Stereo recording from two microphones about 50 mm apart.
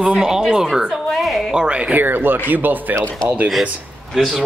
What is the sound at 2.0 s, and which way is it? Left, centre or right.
Speech, right.